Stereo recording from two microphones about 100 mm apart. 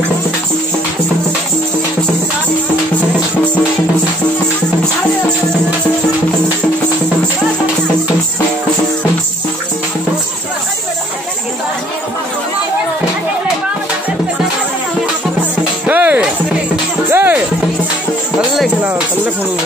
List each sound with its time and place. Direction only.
15.9 s music: 15° right (ahead or behind)